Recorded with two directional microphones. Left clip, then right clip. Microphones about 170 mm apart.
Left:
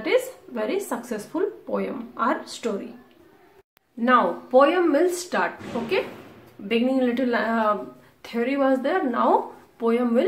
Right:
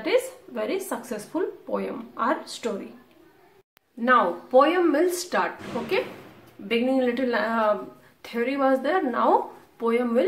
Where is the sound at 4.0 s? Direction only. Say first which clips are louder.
Left 1 dB; centre (ahead or behind).